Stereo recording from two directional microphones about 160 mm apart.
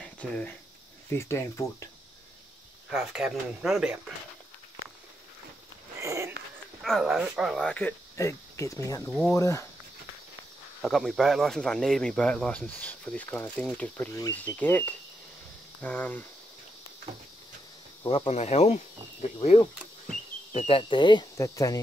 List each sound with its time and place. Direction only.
0.0 s speech: 5° left (ahead or behind)
1.1 s speech: 20° left (ahead or behind)
2.9 s speech: centre (ahead or behind)
5.9 s a sound: 20° right (ahead or behind)
6.8 s speech: centre (ahead or behind)
7.6 s speech: 10° left (ahead or behind)
8.2 s speech: 20° left (ahead or behind)
10.8 s speech: centre (ahead or behind)
18.0 s speech: 35° left (ahead or behind)